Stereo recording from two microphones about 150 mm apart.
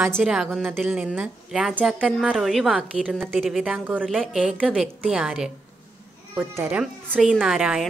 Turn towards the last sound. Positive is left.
turn(degrees=-5)  # may be behind; listen again after turning